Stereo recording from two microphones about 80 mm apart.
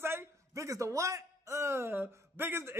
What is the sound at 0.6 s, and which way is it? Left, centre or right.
Speech, right.